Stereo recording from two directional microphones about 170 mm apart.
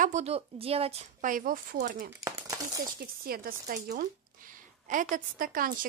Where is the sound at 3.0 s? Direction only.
60° right (ahead or behind).